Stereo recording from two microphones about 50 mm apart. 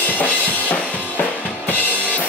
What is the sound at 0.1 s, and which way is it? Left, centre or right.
Drum kit, left.